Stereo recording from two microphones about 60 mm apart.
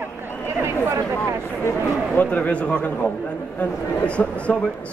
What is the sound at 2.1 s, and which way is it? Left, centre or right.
Speech, left.